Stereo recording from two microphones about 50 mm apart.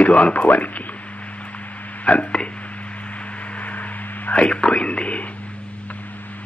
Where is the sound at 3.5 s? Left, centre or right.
Left.